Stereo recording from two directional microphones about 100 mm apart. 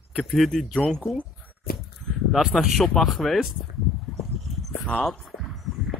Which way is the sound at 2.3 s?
5° right (ahead or behind).